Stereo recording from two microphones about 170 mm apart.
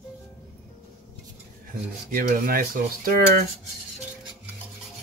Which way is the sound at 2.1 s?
55° right (ahead or behind).